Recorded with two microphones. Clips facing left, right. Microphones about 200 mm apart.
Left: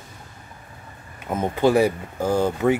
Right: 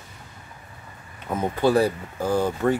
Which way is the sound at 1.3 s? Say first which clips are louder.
Left 2 dB; 20° left (ahead or behind).